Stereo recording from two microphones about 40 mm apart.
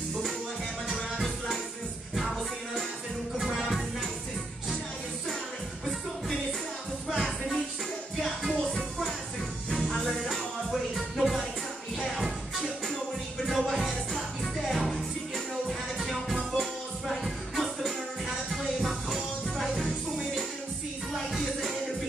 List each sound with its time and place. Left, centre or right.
2.1 s music: centre
7.1 s music: centre
8.2 s music: centre
11.1 s music: centre
13.5 s music: centre
17.2 s music: centre
21.1 s music: centre